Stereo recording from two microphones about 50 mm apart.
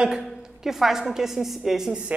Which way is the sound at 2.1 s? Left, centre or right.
Right.